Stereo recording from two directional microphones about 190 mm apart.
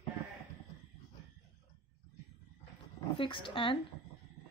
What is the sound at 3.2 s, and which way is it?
Speech, 25° left (ahead or behind).